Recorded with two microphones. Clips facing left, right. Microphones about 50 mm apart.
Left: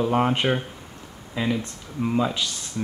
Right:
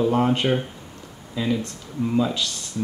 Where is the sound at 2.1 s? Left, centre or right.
Centre.